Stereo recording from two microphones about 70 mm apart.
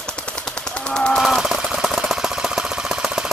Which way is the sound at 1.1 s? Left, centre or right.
Centre.